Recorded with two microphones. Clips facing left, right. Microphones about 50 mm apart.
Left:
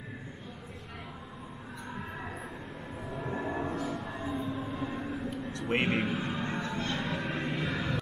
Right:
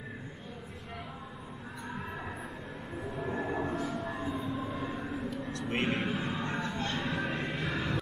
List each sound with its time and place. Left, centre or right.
3.1 s train: centre
5.7 s a man's voice: left
5.9 s music: centre